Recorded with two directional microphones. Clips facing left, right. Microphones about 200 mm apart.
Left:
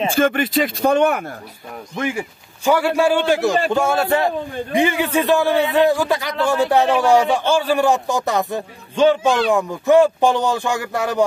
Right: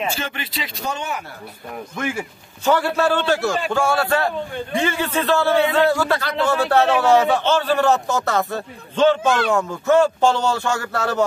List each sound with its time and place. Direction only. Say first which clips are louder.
0.1 s speech: left 12 dB; 50° left (ahead or behind)
2.0 s a man's voice: left 3 dB; 15° left (ahead or behind)